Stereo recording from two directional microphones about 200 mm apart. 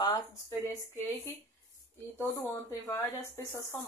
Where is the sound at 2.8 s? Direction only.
10° left (ahead or behind).